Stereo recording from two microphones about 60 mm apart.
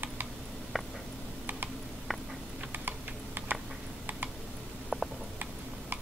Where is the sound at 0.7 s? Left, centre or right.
Centre.